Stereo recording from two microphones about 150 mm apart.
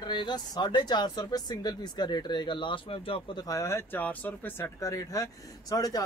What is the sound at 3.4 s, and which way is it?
Speech, 20° left (ahead or behind).